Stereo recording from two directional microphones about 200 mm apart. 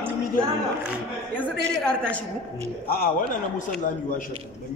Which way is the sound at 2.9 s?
45° left (ahead or behind).